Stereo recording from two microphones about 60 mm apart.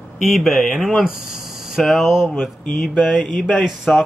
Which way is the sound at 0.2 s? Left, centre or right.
Centre.